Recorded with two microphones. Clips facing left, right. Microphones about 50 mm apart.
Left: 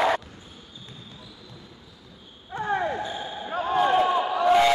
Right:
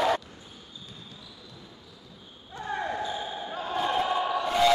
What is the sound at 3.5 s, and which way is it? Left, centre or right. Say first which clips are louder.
Basketball bounce: left 8 dB; left.